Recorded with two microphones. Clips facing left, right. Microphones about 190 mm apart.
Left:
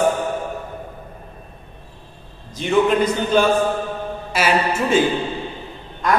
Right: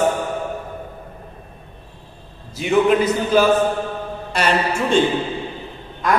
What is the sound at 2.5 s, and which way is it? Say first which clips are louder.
A man's voice: right 1 dB; 5° right (ahead or behind).